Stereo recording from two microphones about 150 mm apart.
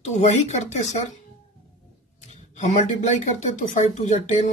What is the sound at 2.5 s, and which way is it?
Speech, 55° left (ahead or behind).